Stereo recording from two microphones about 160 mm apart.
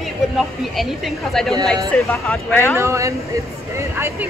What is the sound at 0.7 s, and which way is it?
A woman's voice, centre (ahead or behind).